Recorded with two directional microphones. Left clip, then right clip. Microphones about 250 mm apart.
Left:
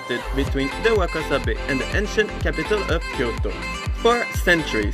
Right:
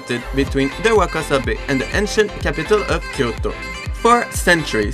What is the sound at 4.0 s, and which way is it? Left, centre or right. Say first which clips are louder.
Speech: right 5 dB; centre.